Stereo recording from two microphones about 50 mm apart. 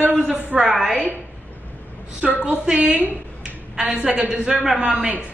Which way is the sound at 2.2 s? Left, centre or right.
Right.